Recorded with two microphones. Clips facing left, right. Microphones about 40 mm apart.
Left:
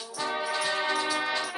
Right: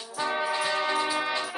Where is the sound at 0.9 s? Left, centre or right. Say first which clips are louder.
Right 1 dB; right.